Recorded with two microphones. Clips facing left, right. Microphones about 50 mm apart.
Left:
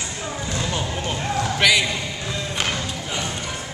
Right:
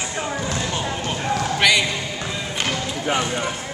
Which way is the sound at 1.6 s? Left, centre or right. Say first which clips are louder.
Even; centre.